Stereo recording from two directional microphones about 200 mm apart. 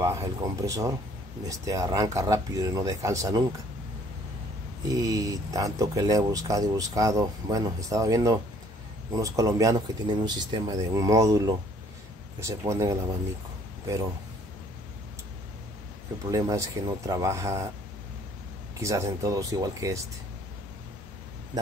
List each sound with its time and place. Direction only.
0.0 s speech: 15° right (ahead or behind)
4.8 s speech: 20° right (ahead or behind)
16.3 s speech: 15° right (ahead or behind)
18.8 s speech: 15° right (ahead or behind)